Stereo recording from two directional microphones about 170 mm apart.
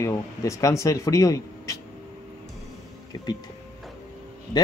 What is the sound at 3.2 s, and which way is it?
Speech, 25° left (ahead or behind).